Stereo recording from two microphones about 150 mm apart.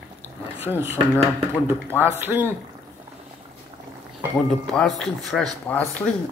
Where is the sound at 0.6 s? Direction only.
15° right (ahead or behind).